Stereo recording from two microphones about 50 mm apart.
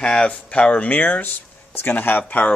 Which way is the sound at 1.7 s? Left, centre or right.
Left.